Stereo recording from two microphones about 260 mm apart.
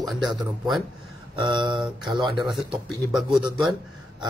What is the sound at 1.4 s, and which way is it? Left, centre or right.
Speech, centre.